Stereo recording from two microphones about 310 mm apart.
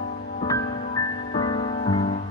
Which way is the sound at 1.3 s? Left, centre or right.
Centre.